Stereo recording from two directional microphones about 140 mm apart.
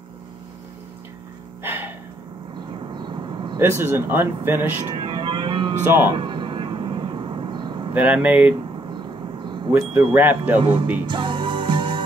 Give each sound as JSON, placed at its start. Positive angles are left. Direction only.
{"t": 1.6, "sound": "a sound", "side_deg": -15}
{"t": 2.9, "sound": "vehicle", "side_deg": -35}
{"t": 3.5, "sound": "speech", "side_deg": -15}
{"t": 4.9, "sound": "music", "side_deg": -35}
{"t": 6.1, "sound": "vehicle", "side_deg": -35}
{"t": 7.9, "sound": "speech", "side_deg": -10}
{"t": 8.9, "sound": "vehicle", "side_deg": -35}
{"t": 9.7, "sound": "speech", "side_deg": -10}
{"t": 10.6, "sound": "speech", "side_deg": -35}
{"t": 11.1, "sound": "music", "side_deg": -35}